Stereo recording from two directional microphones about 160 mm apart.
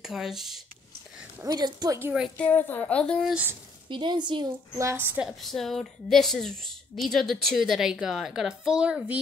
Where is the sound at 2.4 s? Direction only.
10° left (ahead or behind).